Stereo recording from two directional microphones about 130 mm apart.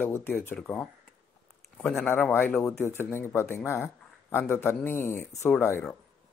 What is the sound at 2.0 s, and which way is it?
Speech, 15° left (ahead or behind).